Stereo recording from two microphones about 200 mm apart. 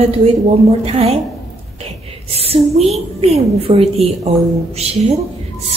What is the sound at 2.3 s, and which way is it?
A woman's voice, 30° right (ahead or behind).